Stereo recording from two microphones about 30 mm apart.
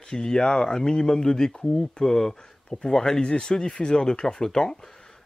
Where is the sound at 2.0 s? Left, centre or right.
Centre.